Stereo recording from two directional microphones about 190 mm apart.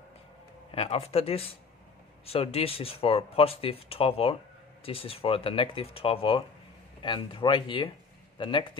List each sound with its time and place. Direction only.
0.7 s speech: 30° left (ahead or behind)